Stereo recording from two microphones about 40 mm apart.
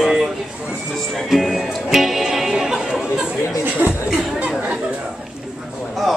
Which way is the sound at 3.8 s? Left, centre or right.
Right.